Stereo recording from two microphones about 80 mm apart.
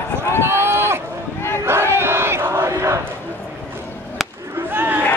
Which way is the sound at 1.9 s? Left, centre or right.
Right.